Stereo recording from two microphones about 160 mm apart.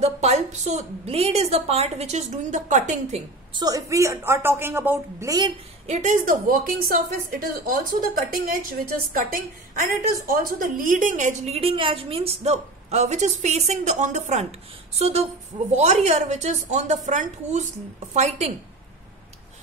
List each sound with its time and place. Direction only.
0.0 s a woman's voice: 45° right (ahead or behind)
3.5 s a woman's voice: 20° right (ahead or behind)
5.9 s a woman's voice: 50° right (ahead or behind)